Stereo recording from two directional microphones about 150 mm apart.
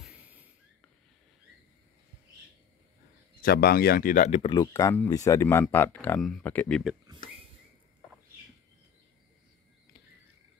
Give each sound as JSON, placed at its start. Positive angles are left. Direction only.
{"t": 0.0, "sound": "a sound", "side_deg": -10}
{"t": 3.3, "sound": "speech", "side_deg": 85}
{"t": 4.3, "sound": "speech", "side_deg": 40}
{"t": 4.6, "sound": "speech", "side_deg": 20}